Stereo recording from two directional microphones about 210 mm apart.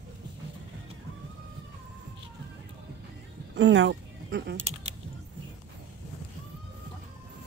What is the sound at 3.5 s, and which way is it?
Speech, 60° right (ahead or behind).